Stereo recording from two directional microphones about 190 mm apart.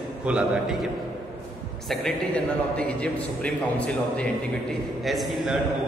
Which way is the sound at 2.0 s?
5° left (ahead or behind).